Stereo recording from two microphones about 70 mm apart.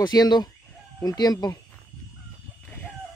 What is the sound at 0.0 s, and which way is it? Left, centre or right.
Speech, left.